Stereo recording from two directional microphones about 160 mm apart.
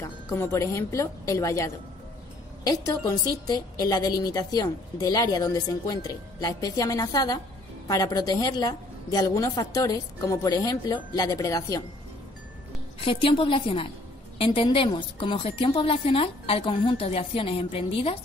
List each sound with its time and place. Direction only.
0.0 s a woman's voice: 15° left (ahead or behind)
13.0 s a woman's voice: 30° left (ahead or behind)